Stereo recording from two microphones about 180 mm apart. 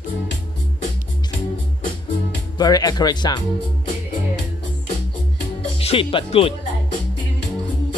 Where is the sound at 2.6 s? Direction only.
20° left (ahead or behind).